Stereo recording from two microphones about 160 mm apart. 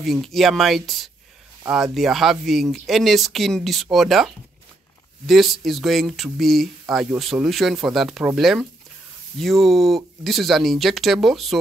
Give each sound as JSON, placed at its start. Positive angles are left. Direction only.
{"t": 0.0, "sound": "speech", "side_deg": 0}